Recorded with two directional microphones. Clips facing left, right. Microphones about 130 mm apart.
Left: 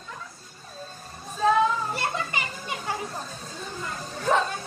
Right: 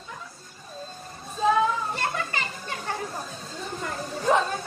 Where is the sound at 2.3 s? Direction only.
15° left (ahead or behind).